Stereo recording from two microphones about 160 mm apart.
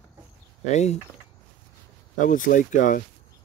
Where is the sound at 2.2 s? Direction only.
55° left (ahead or behind).